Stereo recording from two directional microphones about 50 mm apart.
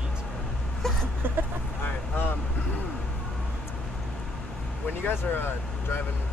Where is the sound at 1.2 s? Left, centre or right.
Right.